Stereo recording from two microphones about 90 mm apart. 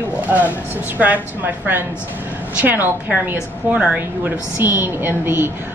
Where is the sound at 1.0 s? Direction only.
20° right (ahead or behind).